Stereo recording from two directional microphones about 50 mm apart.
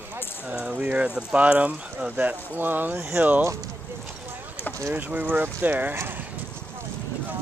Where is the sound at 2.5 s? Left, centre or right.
Right.